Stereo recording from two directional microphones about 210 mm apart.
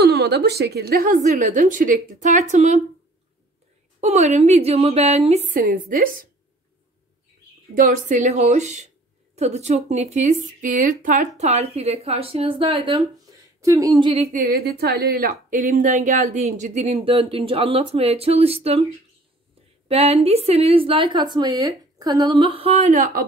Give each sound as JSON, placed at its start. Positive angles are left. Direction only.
{"t": 0.0, "sound": "a woman's voice", "side_deg": -50}
{"t": 4.0, "sound": "a woman's voice", "side_deg": -35}
{"t": 7.7, "sound": "a woman's voice", "side_deg": -40}
{"t": 14.3, "sound": "a woman's voice", "side_deg": -45}
{"t": 19.9, "sound": "a woman's voice", "side_deg": -30}